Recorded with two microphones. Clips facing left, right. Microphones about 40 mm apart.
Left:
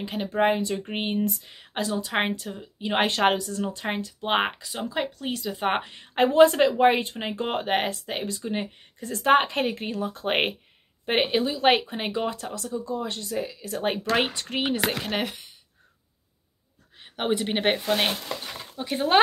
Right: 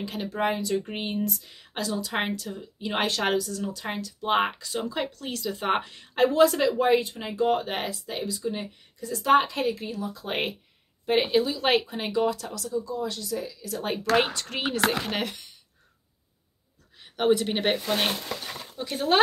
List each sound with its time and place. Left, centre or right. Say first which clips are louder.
0.0 s speech: left 4 dB; left
11.2 s speech: left 2 dB; left
14.1 s speech: right 4 dB; left
17.0 s speech: right 3 dB; left
18.4 s a sound: even; centre
18.8 s speech: left 2 dB; centre